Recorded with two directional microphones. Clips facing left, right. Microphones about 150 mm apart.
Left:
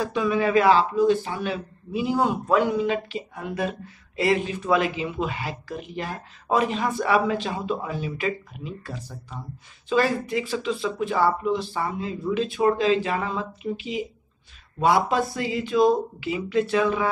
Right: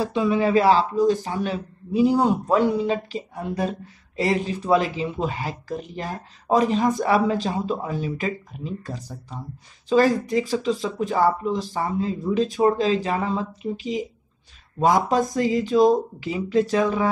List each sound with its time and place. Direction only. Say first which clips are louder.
0.0 s speech: right 2 dB; 25° right (ahead or behind)